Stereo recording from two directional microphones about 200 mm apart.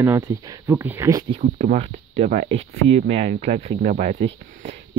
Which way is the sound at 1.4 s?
40° right (ahead or behind).